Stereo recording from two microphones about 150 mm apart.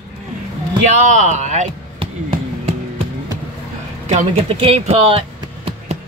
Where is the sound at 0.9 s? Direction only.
50° right (ahead or behind).